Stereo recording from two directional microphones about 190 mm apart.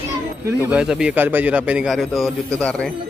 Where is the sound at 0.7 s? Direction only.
5° right (ahead or behind).